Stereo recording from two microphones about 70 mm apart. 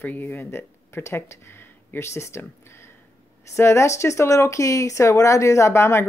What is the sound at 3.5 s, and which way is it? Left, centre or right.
Speech, left.